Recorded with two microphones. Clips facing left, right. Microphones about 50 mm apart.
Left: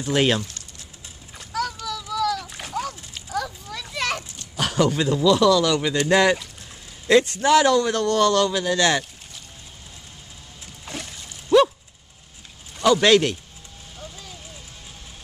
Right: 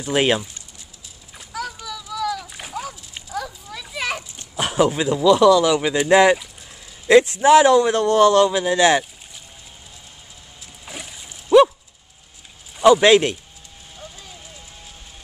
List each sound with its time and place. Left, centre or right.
0.1 s speech: centre
1.3 s splash: centre
3.3 s children playing: centre
4.4 s a man's voice: centre
10.9 s splash: centre
12.8 s a man's voice: centre
13.9 s a sound: centre